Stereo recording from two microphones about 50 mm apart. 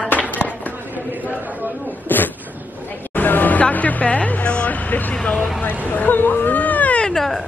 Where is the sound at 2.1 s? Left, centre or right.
Left.